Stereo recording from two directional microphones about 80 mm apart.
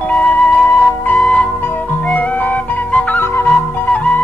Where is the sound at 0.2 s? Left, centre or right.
Centre.